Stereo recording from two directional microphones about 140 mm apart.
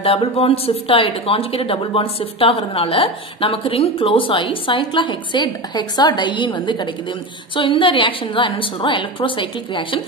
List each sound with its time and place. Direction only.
0.0 s speech: 40° left (ahead or behind)